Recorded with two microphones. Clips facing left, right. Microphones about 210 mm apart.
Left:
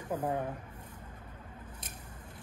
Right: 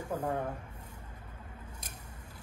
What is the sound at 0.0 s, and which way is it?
Speech, 10° right (ahead or behind).